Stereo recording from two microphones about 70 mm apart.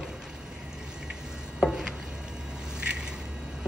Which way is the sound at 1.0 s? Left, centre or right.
Centre.